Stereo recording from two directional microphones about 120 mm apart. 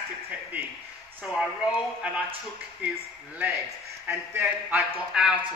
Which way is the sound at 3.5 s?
25° right (ahead or behind).